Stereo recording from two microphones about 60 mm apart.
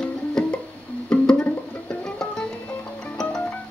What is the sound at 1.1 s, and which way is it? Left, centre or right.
Music, centre.